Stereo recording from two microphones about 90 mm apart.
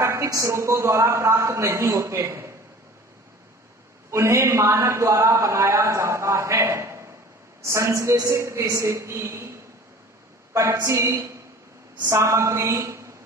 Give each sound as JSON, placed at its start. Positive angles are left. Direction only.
{"t": 0.0, "sound": "a man's voice", "side_deg": -35}
{"t": 4.1, "sound": "a man's voice", "side_deg": -35}
{"t": 10.5, "sound": "a man's voice", "side_deg": -30}